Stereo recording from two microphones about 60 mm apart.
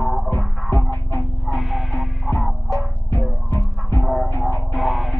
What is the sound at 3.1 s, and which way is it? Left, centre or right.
Music, left.